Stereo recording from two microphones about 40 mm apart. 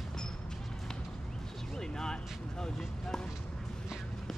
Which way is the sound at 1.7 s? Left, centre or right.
Centre.